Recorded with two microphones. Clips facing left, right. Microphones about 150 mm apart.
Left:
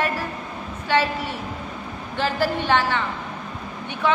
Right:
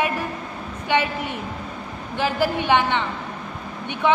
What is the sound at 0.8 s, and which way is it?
A woman's voice, 15° right (ahead or behind).